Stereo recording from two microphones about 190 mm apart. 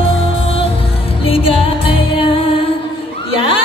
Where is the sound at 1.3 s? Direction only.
30° left (ahead or behind).